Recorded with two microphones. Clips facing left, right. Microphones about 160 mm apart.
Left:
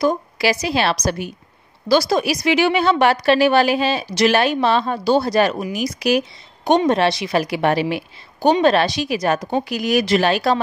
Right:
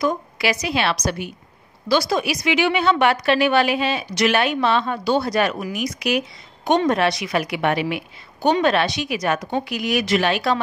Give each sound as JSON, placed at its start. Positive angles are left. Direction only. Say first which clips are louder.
{"t": 0.0, "sound": "a woman's voice", "louder": "left 3 dB", "side_deg": 35}